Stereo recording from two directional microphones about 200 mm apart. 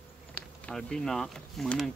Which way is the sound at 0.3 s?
5° left (ahead or behind).